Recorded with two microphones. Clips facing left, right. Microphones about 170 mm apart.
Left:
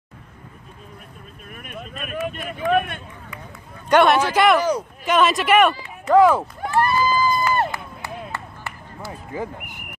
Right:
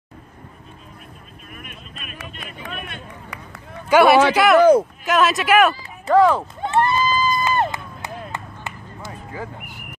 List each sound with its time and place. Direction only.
1.5 s speech: 45° left (ahead or behind)
3.3 s run: 70° right (ahead or behind)
3.9 s speech: 5° right (ahead or behind)
4.6 s speech: 55° right (ahead or behind)
5.0 s speech: centre (ahead or behind)
6.4 s run: 25° right (ahead or behind)
8.3 s a sound: 20° right (ahead or behind)
9.3 s speech: 20° left (ahead or behind)